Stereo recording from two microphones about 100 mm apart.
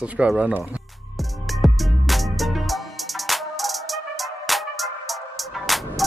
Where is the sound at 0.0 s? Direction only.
10° right (ahead or behind).